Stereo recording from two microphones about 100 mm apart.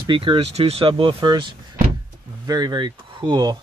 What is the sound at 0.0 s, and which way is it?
Speech, 55° right (ahead or behind).